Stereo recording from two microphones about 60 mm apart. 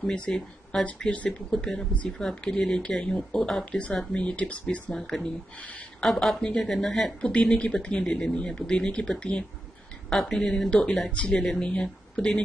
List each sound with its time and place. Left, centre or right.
0.1 s speech: centre
4.9 s a woman's voice: centre
8.0 s speech: centre
10.7 s speech: centre